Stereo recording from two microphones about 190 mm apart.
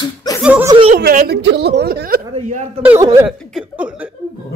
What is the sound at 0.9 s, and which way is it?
A woman's voice, 55° right (ahead or behind).